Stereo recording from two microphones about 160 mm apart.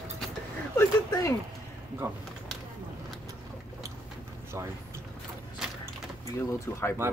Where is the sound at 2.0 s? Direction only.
15° right (ahead or behind).